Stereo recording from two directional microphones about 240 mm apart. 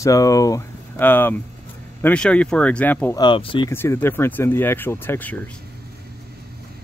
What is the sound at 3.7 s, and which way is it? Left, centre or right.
Speech, centre.